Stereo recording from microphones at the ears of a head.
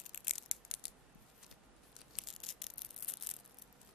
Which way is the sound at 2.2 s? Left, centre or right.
Left.